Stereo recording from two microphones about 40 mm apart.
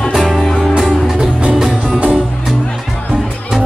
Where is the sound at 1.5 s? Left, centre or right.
Centre.